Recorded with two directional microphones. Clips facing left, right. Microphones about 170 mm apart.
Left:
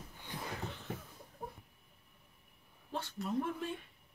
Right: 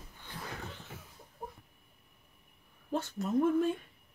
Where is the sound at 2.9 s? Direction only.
45° right (ahead or behind).